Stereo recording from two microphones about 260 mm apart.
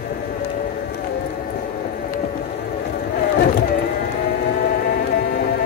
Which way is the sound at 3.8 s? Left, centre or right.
Left.